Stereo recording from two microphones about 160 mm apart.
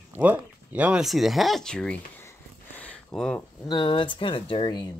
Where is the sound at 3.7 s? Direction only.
30° left (ahead or behind).